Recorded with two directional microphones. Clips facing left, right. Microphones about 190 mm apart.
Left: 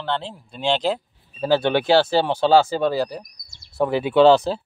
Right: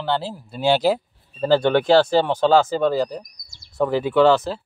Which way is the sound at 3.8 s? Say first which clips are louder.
Left 1 dB; 20° left (ahead or behind).